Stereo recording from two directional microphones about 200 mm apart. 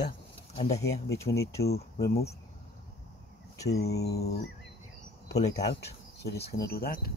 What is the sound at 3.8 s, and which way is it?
Speech, 55° left (ahead or behind).